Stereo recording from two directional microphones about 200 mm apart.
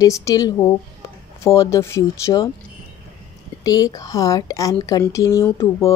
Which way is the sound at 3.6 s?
15° left (ahead or behind).